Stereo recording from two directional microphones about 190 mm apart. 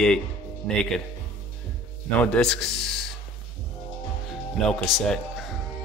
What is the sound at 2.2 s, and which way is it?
Speech, 5° left (ahead or behind).